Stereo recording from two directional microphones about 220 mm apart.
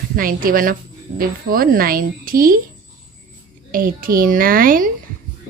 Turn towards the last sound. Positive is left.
turn(degrees=-40)  # may be behind; listen again after turning